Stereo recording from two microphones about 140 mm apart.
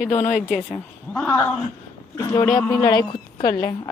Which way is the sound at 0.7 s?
10° left (ahead or behind).